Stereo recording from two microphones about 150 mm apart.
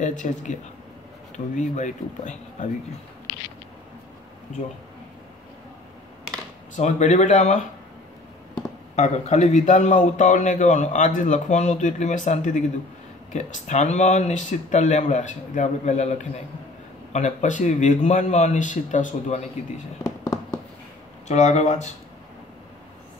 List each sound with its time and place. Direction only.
0.0 s a man's voice: 55° left (ahead or behind)
4.5 s speech: 55° left (ahead or behind)
6.7 s a man's voice: 50° left (ahead or behind)
8.9 s a man's voice: 50° left (ahead or behind)
20.0 s fireworks: 20° left (ahead or behind)
21.3 s a man's voice: 50° left (ahead or behind)